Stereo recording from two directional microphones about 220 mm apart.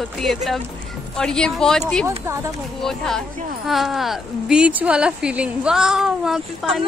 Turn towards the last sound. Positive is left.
turn(degrees=0)  # may be behind; listen again after turning